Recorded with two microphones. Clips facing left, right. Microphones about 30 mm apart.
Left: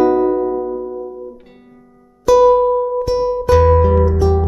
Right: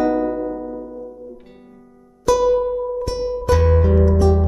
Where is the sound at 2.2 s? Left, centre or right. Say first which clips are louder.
Left 6 dB; centre.